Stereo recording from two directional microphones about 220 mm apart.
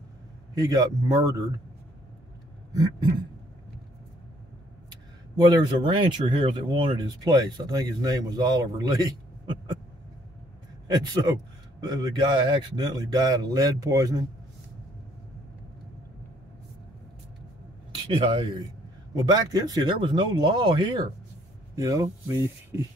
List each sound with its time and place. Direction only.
0.6 s speech: 15° right (ahead or behind)
5.3 s speech: 20° right (ahead or behind)
10.9 s speech: 20° right (ahead or behind)
17.9 s speech: 20° right (ahead or behind)